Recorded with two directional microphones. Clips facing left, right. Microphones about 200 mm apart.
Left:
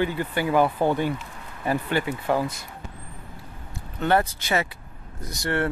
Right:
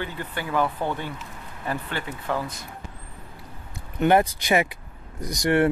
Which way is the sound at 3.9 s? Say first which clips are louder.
Right 3 dB; 15° right (ahead or behind).